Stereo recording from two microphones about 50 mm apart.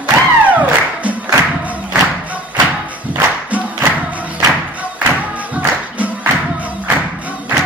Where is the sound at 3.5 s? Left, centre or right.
Right.